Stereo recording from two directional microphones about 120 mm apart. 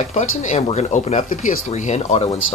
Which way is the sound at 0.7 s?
90° left.